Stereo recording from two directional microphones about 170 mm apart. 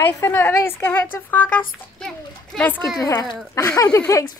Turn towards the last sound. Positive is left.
turn(degrees=15)  # may be behind; listen again after turning